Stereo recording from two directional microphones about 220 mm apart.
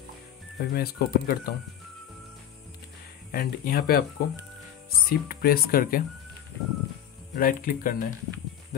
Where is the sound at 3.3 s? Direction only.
40° left (ahead or behind).